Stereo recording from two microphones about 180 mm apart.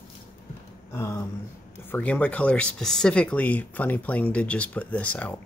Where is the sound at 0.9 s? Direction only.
15° left (ahead or behind).